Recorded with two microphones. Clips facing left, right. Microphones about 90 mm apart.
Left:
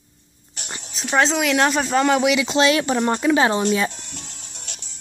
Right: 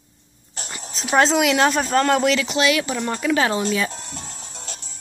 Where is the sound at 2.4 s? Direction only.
30° left (ahead or behind).